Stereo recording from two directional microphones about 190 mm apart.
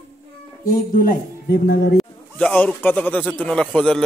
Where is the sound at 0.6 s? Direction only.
45° left (ahead or behind).